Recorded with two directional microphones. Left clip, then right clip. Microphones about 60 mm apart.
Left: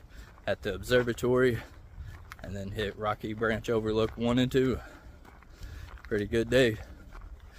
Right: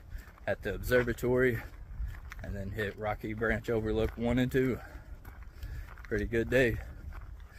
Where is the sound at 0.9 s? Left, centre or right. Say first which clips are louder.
Left 2 dB; centre.